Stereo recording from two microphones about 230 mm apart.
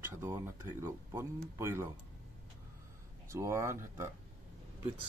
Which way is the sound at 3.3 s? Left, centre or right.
Centre.